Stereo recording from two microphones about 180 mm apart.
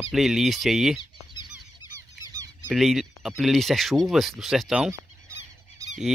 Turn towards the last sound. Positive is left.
turn(degrees=-20)  # may be behind; listen again after turning